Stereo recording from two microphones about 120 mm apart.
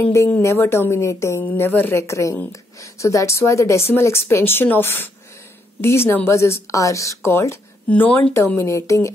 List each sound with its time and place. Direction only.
0.0 s speech: 25° left (ahead or behind)
7.9 s speech: 10° left (ahead or behind)
8.5 s speech: 25° left (ahead or behind)